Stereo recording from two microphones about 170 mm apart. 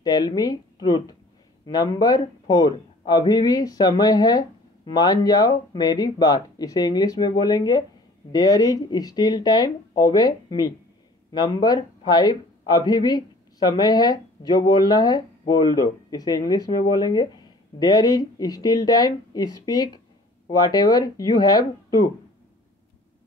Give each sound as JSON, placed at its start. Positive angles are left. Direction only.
{"t": 0.0, "sound": "speech", "side_deg": 25}